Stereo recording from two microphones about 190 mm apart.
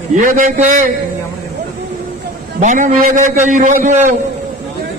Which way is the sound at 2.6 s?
45° right (ahead or behind).